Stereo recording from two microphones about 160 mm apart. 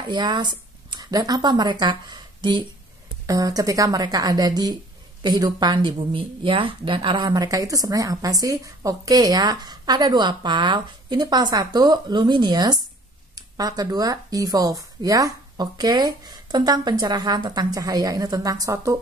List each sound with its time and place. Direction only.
0.1 s speech: 30° right (ahead or behind)